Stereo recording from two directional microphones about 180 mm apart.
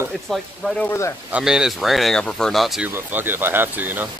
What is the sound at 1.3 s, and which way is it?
Speech, 5° right (ahead or behind).